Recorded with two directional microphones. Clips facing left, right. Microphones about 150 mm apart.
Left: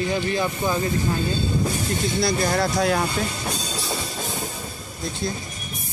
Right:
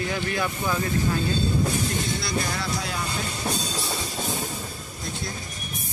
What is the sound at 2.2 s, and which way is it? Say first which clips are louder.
Speech: left 7 dB; 45° left (ahead or behind).